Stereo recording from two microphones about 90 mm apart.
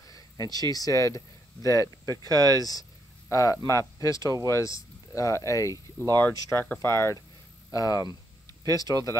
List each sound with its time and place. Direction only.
0.0 s speech: 45° left (ahead or behind)
2.0 s speech: 45° right (ahead or behind)
2.6 s a sound: 45° left (ahead or behind)
3.6 s speech: 35° left (ahead or behind)
7.7 s speech: 40° left (ahead or behind)